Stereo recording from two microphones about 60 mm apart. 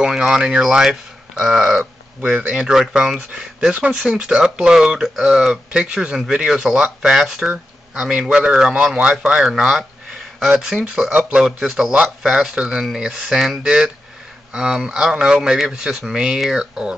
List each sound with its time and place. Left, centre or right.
0.0 s speech: centre
2.2 s speech: right
7.4 s speech: centre
10.7 s speech: centre
11.2 s speech: centre
11.8 s speech: right
12.2 s speech: centre